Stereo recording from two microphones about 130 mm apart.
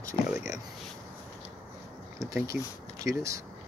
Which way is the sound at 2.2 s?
25° right (ahead or behind).